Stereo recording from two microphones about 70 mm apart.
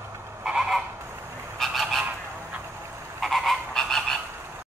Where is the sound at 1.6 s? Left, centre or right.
Centre.